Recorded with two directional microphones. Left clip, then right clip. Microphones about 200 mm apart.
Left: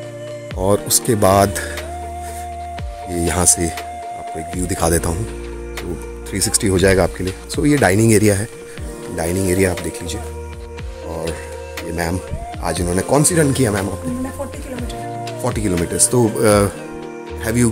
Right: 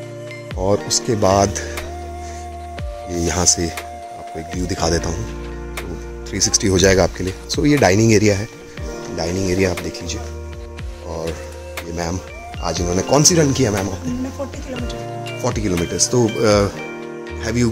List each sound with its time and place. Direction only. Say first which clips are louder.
0.6 s speech: left 1 dB; 20° left (ahead or behind)
3.1 s speech: even; 5° left (ahead or behind)
6.5 s speech: even; centre (ahead or behind)
9.1 s speech: left 2 dB; 15° left (ahead or behind)
11.1 s music: left 1 dB; 5° left (ahead or behind)
11.9 s speech: left 3 dB; 15° left (ahead or behind)